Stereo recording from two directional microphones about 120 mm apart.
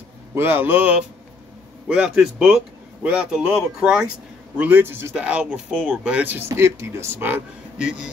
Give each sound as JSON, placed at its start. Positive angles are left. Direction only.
{"t": 0.3, "sound": "speech", "side_deg": -20}